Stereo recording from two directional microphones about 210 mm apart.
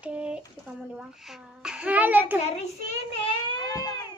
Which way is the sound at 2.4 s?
30° left (ahead or behind).